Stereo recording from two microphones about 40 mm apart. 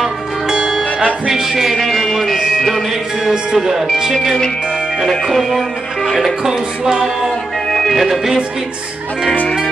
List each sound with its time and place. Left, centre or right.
0.5 s music: centre
0.9 s music: right
1.3 s music: centre
2.0 s speech: centre
2.9 s music: centre
5.2 s music: centre
7.7 s music: centre